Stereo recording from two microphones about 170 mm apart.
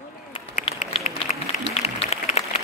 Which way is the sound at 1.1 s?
50° left (ahead or behind).